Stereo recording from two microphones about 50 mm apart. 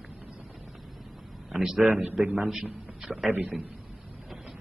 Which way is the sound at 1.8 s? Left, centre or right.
Right.